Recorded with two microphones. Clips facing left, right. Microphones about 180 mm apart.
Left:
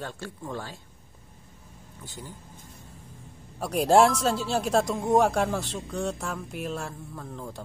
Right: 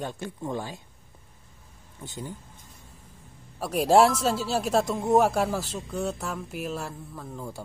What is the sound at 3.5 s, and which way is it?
Speech, centre (ahead or behind).